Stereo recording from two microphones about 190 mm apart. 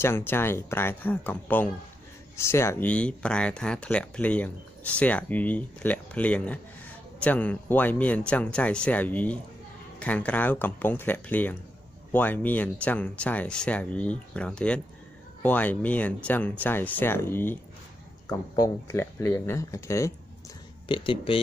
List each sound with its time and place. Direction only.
0.0 s speech: 10° left (ahead or behind)
20.9 s speech: 25° left (ahead or behind)